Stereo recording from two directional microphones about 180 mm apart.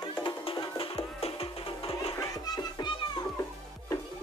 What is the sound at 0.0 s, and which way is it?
Music, 25° left (ahead or behind).